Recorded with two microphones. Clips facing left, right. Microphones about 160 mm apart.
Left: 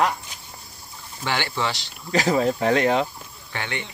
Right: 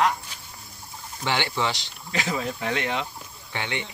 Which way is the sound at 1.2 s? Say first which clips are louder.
Even; 20° right (ahead or behind).